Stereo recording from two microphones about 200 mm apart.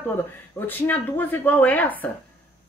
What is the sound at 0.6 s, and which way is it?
A woman's voice, 10° left (ahead or behind).